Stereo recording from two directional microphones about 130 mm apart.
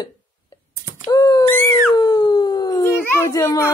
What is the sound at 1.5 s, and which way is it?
Dog, 15° left (ahead or behind).